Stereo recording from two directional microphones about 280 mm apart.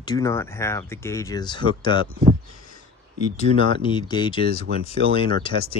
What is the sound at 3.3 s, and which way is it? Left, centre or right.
Speech, centre.